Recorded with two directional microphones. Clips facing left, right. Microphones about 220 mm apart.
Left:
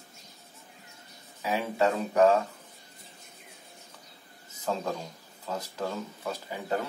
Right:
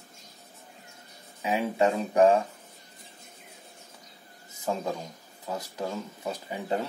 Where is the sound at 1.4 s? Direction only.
15° right (ahead or behind).